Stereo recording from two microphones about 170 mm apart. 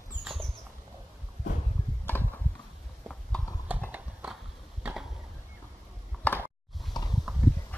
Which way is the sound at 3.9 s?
10° right (ahead or behind).